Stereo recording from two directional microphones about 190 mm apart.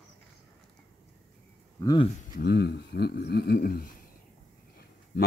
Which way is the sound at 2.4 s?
55° left (ahead or behind).